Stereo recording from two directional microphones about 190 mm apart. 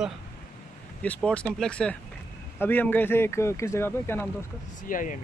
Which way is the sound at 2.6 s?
10° left (ahead or behind).